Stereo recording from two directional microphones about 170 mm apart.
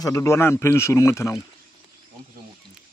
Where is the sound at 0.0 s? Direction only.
20° left (ahead or behind).